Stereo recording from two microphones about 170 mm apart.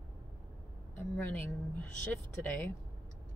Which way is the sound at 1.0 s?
10° left (ahead or behind).